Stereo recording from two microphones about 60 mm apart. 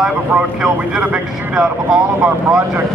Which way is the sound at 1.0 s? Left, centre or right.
Right.